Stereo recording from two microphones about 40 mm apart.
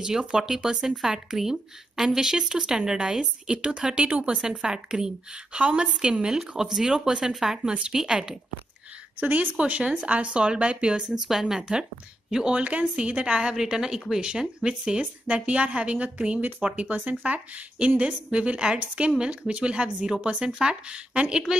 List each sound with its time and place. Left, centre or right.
0.0 s speech: centre
4.4 s speech: centre
9.2 s speech: right
9.6 s speech: right; by 12.5 s centre
12.5 s a woman's voice: right
21.1 s speech: right